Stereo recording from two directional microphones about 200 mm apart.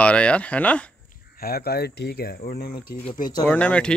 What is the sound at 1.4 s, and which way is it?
Speech, 50° left (ahead or behind).